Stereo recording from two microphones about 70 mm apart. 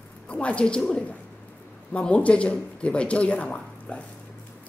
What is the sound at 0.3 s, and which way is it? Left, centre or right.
Speech, centre.